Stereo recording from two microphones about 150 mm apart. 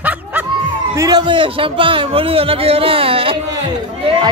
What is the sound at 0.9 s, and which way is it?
A man's voice, 25° right (ahead or behind).